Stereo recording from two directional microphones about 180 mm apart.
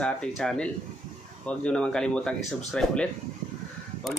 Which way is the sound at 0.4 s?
5° left (ahead or behind).